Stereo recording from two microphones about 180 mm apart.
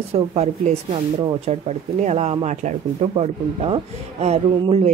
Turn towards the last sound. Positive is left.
turn(degrees=-35)  # may be behind; listen again after turning